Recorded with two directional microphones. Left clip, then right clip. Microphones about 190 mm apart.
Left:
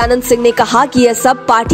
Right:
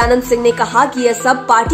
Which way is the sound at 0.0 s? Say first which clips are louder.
Left 2 dB; 45° left (ahead or behind).